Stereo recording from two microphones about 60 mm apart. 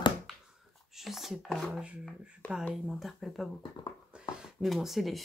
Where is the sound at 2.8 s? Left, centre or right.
Centre.